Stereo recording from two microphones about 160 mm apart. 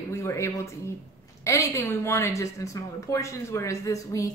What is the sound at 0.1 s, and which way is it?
A woman's voice, 15° left (ahead or behind).